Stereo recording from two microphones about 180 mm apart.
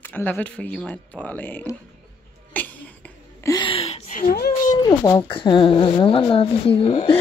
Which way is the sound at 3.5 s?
30° left (ahead or behind).